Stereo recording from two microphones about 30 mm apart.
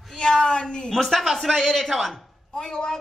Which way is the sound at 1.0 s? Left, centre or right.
Centre.